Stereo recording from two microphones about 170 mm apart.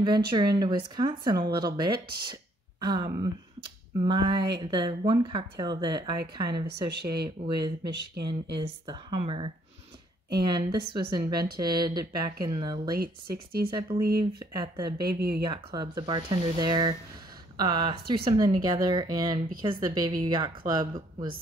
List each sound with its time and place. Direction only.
0.0 s a woman's voice: 25° right (ahead or behind)
6.9 s speech: 75° right (ahead or behind)
7.4 s a woman's voice: 25° right (ahead or behind)
12.9 s speech: 65° right (ahead or behind)
13.7 s a woman's voice: 30° right (ahead or behind)
15.1 s speech: 65° right (ahead or behind)
15.4 s a woman's voice: 25° right (ahead or behind)